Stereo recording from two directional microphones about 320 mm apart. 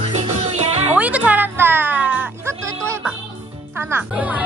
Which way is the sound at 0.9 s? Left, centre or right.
Centre.